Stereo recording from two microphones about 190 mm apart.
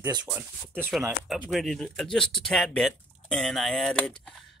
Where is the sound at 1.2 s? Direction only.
Centre (ahead or behind).